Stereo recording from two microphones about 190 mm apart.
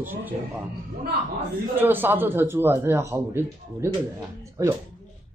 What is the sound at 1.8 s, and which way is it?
A man's voice, 10° right (ahead or behind).